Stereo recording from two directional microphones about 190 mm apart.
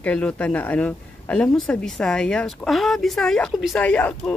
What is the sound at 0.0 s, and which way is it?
Speech, 5° left (ahead or behind).